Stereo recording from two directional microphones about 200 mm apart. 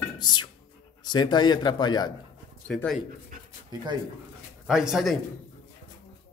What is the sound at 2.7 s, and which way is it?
Speech, centre (ahead or behind).